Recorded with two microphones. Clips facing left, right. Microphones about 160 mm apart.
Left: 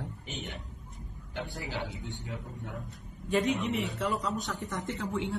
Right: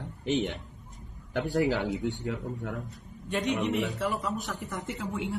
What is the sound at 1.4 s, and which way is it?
Speech, 90° right.